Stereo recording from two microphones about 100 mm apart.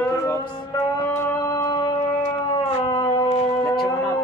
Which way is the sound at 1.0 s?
20° left (ahead or behind).